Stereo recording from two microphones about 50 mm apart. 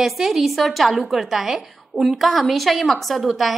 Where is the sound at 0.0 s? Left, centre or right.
Centre.